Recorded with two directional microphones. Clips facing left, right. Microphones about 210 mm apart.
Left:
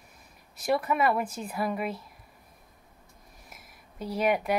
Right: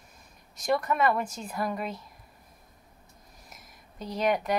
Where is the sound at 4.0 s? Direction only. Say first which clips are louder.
Left 1 dB; 5° left (ahead or behind).